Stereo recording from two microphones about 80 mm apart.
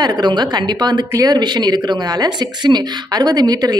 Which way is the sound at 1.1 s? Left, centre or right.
Right.